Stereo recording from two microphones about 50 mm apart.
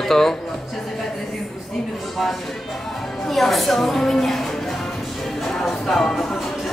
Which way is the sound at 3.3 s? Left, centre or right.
Centre.